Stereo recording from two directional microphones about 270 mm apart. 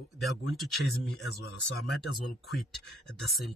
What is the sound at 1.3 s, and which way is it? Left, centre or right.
Speech, left.